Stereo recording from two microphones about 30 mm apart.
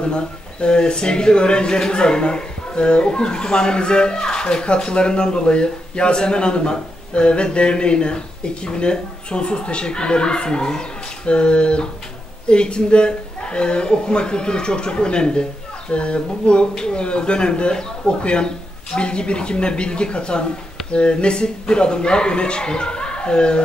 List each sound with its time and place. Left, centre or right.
0.1 s speech: left